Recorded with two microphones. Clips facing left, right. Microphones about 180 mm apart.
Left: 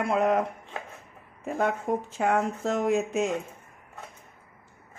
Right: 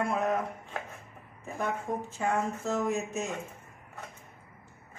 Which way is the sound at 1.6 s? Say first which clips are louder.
Left 5 dB; 60° left (ahead or behind).